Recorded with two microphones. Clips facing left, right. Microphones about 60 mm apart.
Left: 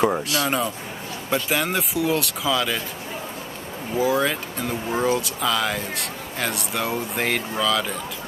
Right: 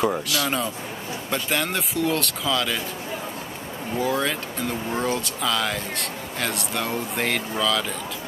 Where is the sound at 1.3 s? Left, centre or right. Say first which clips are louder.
Left 3 dB; centre.